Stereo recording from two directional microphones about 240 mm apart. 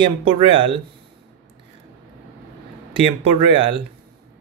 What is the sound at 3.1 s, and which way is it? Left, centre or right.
Speech, right.